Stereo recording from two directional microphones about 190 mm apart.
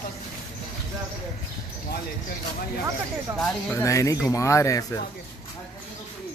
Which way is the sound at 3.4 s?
15° left (ahead or behind).